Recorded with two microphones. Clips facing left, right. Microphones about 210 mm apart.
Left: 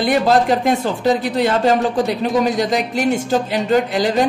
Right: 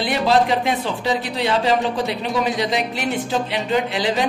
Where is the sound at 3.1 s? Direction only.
45° left (ahead or behind).